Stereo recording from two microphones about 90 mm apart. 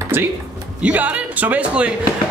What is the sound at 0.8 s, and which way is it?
Speech, 15° right (ahead or behind).